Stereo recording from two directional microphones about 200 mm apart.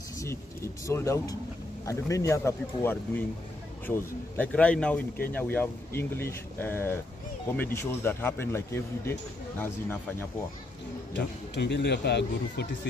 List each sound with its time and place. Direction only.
0.2 s speech: 15° left (ahead or behind)
11.1 s speech: 60° left (ahead or behind)